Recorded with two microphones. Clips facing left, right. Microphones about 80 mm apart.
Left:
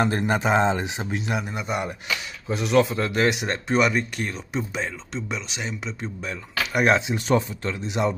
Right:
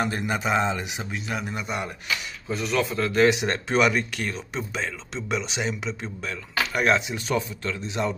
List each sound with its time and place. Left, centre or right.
0.0 s speech: left
1.3 s a man's voice: centre
2.4 s speech: centre
3.4 s speech: centre
6.2 s speech: centre